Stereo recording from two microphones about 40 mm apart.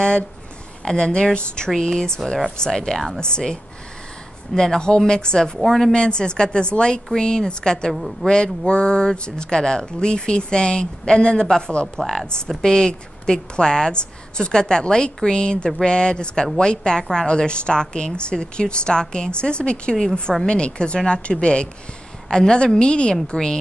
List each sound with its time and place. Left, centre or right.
0.8 s a woman's voice: centre
4.6 s a woman's voice: centre
7.9 s a woman's voice: centre
8.3 s a woman's voice: left
12.0 s a woman's voice: centre
12.6 s a woman's voice: centre